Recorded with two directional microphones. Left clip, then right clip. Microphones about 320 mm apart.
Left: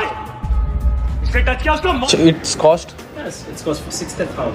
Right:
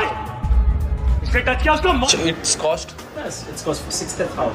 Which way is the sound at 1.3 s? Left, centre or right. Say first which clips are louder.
Even; centre.